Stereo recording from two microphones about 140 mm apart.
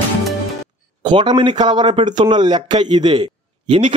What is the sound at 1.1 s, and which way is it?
A man's voice, 35° right (ahead or behind).